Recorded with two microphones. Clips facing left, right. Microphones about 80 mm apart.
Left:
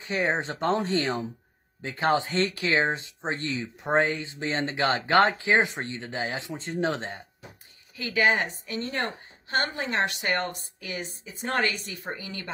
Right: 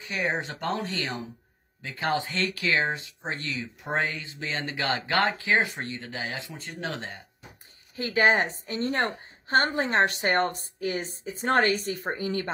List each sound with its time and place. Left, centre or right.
0.0 s speech: left
7.9 s a woman's voice: right